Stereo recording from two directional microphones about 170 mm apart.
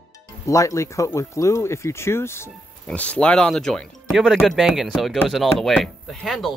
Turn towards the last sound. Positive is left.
turn(degrees=0)  # may be behind; listen again after turning